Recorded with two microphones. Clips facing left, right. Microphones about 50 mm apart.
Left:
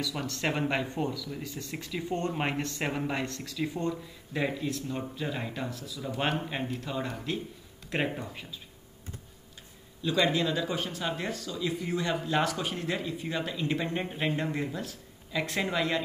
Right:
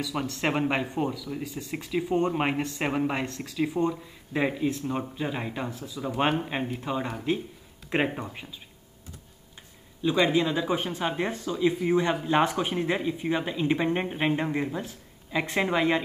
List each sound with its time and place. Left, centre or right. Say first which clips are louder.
0.0 s speech: right 3 dB; centre
10.0 s speech: right 4 dB; centre